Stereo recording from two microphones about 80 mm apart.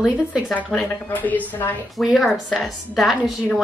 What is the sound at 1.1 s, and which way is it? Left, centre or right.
Speech, left.